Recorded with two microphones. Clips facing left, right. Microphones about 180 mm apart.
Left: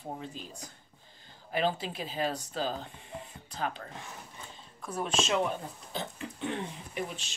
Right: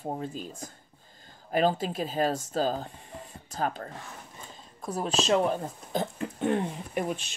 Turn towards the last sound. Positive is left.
turn(degrees=-50)  # may be behind; listen again after turning